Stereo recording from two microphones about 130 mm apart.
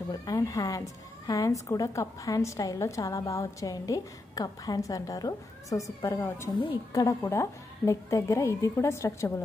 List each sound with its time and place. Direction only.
0.1 s a woman's voice: 30° left (ahead or behind)